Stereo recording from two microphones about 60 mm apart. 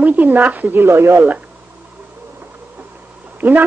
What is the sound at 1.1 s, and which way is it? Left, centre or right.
Speech, right.